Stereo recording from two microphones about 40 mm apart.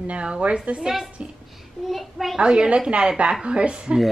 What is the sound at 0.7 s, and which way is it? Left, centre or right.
A woman's voice, centre.